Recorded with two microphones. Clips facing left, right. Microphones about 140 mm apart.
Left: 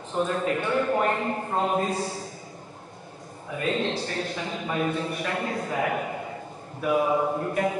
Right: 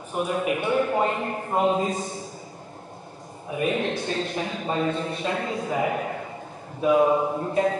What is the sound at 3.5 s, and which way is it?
A man's voice, 20° right (ahead or behind).